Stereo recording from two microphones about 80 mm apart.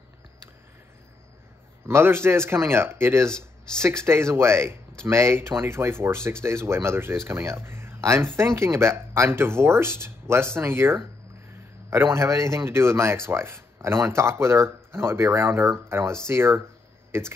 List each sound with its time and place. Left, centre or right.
1.9 s speech: right